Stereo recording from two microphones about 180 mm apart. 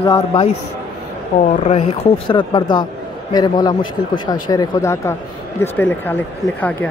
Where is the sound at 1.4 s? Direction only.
35° left (ahead or behind).